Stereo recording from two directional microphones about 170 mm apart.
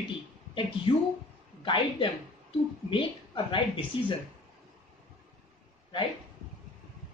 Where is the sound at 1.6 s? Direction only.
30° left (ahead or behind).